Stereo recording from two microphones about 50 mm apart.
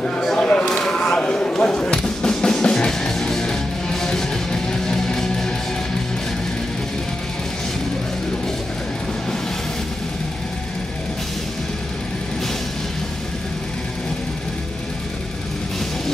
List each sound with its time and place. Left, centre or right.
0.4 s a sound: left
1.0 s basketball bounce: centre
2.0 s music: centre